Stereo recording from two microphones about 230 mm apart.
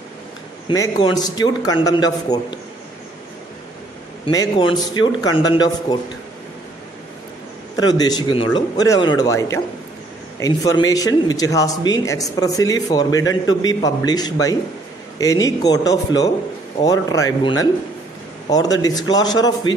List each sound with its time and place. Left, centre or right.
0.7 s speech: centre
4.3 s speech: centre
7.7 s speech: centre